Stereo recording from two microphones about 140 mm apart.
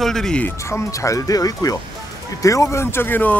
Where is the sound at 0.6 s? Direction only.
20° left (ahead or behind).